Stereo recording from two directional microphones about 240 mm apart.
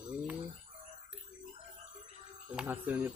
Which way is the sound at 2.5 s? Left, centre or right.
Centre.